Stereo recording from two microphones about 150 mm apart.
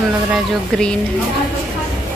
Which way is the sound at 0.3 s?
5° left (ahead or behind).